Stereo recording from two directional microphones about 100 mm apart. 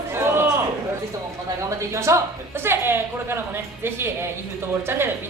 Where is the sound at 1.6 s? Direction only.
30° right (ahead or behind).